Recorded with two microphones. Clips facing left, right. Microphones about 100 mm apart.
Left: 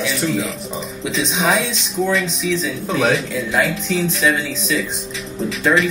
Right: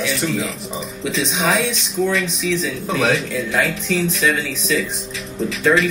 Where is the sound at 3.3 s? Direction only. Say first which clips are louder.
Left 1 dB; 30° left (ahead or behind).